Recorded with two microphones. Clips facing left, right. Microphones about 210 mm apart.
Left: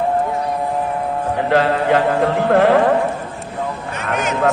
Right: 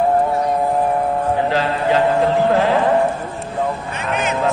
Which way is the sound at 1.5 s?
55° left (ahead or behind).